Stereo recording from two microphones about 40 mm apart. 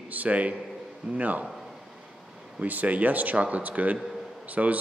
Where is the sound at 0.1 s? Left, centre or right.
Right.